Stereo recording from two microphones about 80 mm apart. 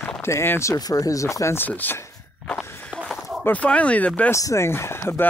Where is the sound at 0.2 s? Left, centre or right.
Left.